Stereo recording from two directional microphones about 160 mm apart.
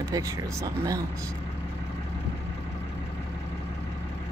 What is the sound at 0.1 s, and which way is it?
Speech, 20° right (ahead or behind).